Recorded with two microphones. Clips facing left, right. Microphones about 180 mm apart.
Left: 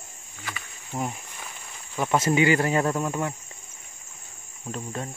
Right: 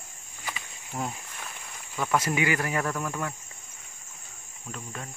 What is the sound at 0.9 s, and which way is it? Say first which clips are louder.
Speech: left 3 dB; 20° left (ahead or behind).